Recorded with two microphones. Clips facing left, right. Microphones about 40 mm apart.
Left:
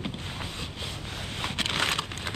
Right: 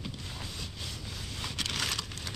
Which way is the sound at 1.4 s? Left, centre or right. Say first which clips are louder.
Left 6 dB; left.